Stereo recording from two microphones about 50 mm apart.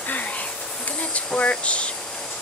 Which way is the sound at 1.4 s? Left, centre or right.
Left.